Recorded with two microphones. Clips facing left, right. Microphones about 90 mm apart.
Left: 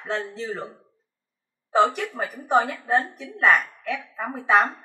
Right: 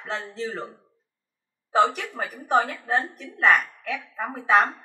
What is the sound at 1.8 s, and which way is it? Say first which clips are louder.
A woman's voice: left 1 dB; centre (ahead or behind).